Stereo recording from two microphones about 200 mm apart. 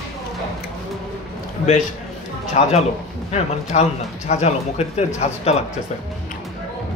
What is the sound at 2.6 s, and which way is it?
Speech, 35° left (ahead or behind).